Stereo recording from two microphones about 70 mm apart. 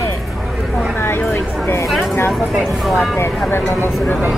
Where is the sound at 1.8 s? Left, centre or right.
Centre.